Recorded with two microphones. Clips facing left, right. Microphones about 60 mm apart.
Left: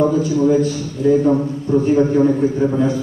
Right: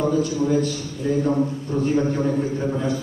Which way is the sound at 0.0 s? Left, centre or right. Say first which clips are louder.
Left 6 dB; left.